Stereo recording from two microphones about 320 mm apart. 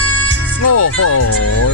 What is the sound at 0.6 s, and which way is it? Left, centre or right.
Speech, left.